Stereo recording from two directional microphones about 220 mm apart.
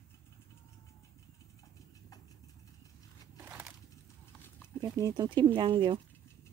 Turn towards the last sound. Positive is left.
turn(degrees=-20)  # may be behind; listen again after turning